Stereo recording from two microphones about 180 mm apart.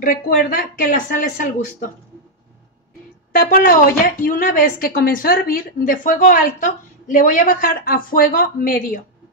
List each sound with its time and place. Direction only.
0.0 s a woman's voice: 50° left (ahead or behind)
3.3 s a woman's voice: 50° left (ahead or behind)